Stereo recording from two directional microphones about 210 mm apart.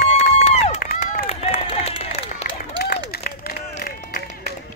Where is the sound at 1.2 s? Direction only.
30° left (ahead or behind).